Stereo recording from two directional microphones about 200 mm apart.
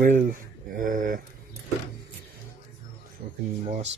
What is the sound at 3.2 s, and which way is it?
Speech, 45° right (ahead or behind).